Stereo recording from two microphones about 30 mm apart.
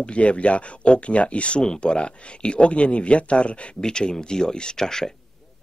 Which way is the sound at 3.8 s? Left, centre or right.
Left.